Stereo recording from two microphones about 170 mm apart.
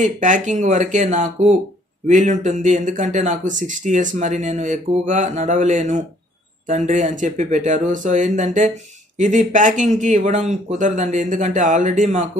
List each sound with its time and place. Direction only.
0.0 s speech: 50° right (ahead or behind)